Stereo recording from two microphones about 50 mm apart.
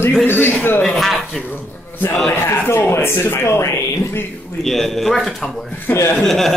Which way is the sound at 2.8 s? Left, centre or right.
Left.